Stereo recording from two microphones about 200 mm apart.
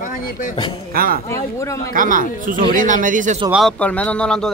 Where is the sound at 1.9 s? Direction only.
45° right (ahead or behind).